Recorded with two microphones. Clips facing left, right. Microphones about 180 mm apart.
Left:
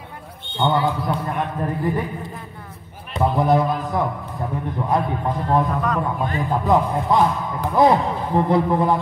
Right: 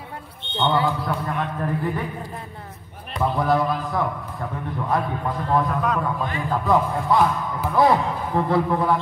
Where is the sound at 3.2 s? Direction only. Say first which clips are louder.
Left 3 dB; 20° left (ahead or behind).